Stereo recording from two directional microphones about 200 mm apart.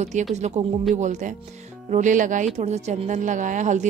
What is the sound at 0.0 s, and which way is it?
Speech, 35° right (ahead or behind).